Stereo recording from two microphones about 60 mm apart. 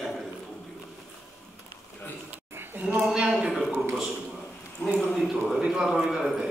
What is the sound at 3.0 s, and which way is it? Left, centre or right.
Speech, centre.